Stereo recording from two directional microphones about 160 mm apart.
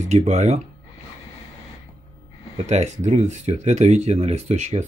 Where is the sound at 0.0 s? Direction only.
45° right (ahead or behind).